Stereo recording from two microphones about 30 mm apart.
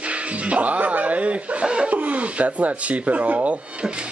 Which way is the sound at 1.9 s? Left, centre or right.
Right.